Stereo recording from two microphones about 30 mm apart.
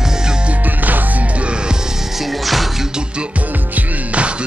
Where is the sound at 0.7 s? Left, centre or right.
Right.